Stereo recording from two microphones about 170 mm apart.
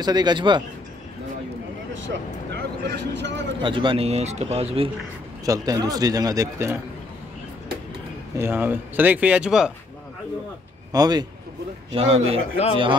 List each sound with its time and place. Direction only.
0.0 s speech: 25° right (ahead or behind)
2.0 s speech: 85° right
3.6 s speech: 30° right (ahead or behind)
5.4 s speech: 20° right (ahead or behind)
8.4 s speech: 15° right (ahead or behind)
10.9 s speech: 25° right (ahead or behind)
11.9 s speech: 35° right (ahead or behind)